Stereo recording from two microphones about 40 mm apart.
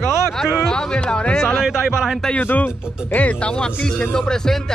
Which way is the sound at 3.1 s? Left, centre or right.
Left.